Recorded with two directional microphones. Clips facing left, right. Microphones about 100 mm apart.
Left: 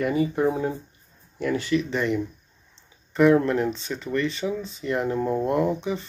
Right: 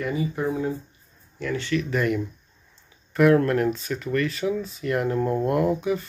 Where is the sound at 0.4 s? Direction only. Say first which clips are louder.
Left 2 dB; 30° left (ahead or behind).